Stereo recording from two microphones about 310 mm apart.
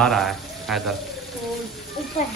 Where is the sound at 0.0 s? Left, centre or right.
Centre.